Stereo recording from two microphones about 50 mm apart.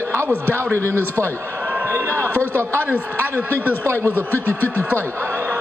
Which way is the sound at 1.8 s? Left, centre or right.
Right.